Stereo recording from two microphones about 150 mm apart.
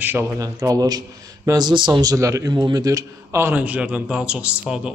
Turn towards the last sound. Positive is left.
turn(degrees=-5)  # may be behind; listen again after turning